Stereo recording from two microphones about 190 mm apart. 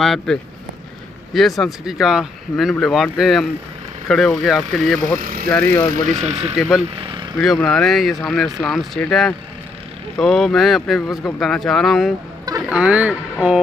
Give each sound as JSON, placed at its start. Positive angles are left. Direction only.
{"t": 0.0, "sound": "speech", "side_deg": 0}
{"t": 5.2, "sound": "speech", "side_deg": -50}
{"t": 5.5, "sound": "speech", "side_deg": 10}
{"t": 6.0, "sound": "speech", "side_deg": -35}
{"t": 6.5, "sound": "speech", "side_deg": 0}
{"t": 7.0, "sound": "a sound", "side_deg": -25}
{"t": 7.3, "sound": "speech", "side_deg": 0}